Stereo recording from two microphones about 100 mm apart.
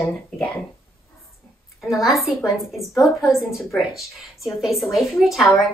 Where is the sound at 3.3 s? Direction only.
Centre (ahead or behind).